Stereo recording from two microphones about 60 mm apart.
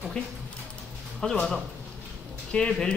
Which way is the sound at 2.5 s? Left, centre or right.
Centre.